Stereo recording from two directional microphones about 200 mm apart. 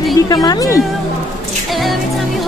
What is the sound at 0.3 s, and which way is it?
Speech, 20° left (ahead or behind).